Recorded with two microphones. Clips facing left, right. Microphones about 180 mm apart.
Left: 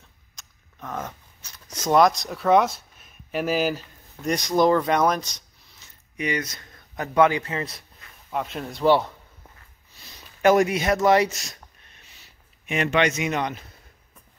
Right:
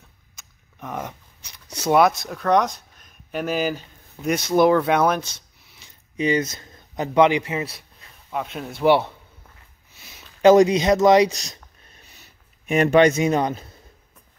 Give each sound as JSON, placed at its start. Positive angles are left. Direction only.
{"t": 0.4, "sound": "speech", "side_deg": -15}
{"t": 6.1, "sound": "speech", "side_deg": -25}
{"t": 8.8, "sound": "a man's voice", "side_deg": -15}
{"t": 9.9, "sound": "a sound", "side_deg": -5}
{"t": 10.4, "sound": "speech", "side_deg": -20}
{"t": 12.6, "sound": "speech", "side_deg": -40}